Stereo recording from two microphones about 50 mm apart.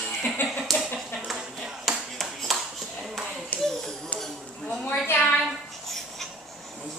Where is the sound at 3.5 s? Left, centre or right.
Left.